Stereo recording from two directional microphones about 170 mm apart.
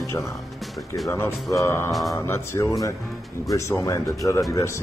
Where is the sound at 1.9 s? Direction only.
Centre (ahead or behind).